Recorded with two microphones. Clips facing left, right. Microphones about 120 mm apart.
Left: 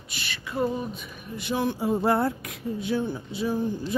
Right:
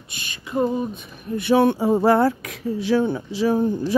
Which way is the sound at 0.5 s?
20° right (ahead or behind).